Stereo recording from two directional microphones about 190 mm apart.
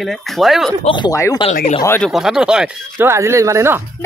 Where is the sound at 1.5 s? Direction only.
45° left (ahead or behind).